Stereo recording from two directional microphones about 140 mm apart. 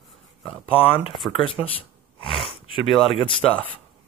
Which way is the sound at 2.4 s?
35° left (ahead or behind).